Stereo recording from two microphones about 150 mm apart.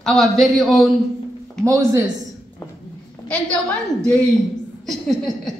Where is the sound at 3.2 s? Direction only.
5° left (ahead or behind).